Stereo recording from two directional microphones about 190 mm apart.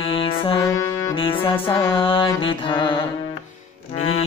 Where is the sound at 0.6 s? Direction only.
15° left (ahead or behind).